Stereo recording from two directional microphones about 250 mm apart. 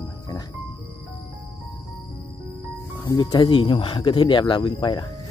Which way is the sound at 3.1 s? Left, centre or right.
Centre.